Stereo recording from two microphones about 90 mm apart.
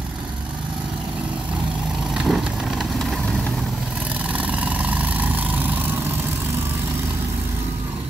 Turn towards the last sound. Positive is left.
turn(degrees=-20)  # may be behind; listen again after turning